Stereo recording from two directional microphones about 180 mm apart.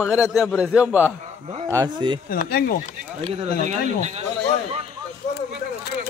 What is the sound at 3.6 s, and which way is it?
Speech, 40° right (ahead or behind).